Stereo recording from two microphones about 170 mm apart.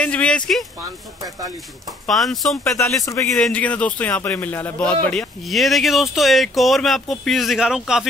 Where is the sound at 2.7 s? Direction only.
15° left (ahead or behind).